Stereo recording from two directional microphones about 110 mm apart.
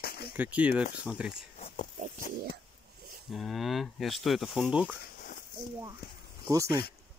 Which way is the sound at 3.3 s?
Centre (ahead or behind).